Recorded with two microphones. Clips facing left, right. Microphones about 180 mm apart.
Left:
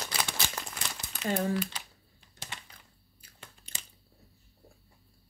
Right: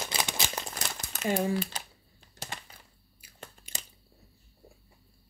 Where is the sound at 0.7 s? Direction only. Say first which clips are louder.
Right 2 dB; 45° right (ahead or behind).